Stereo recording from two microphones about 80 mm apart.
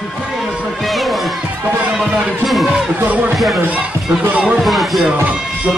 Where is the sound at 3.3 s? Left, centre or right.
Centre.